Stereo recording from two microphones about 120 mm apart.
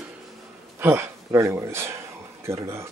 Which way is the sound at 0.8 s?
20° right (ahead or behind).